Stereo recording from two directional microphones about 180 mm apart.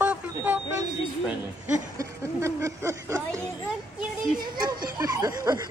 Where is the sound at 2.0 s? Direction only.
15° right (ahead or behind).